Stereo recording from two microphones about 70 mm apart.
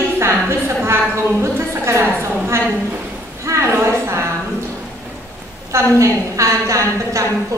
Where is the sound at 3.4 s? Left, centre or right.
Right.